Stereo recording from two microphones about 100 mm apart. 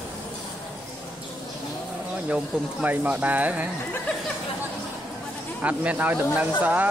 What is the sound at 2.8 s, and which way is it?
Speech, 15° right (ahead or behind).